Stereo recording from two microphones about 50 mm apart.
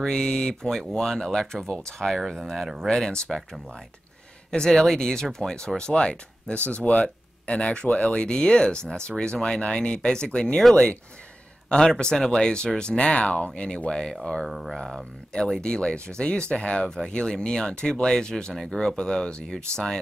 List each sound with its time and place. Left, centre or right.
0.0 s speech: centre
3.3 s speech: centre
14.4 s speech: centre
14.8 s speech: centre